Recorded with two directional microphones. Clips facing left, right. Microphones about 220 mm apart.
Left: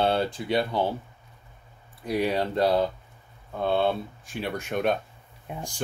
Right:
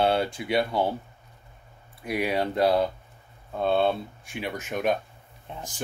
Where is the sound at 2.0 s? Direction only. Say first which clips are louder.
Left 1 dB; 15° right (ahead or behind).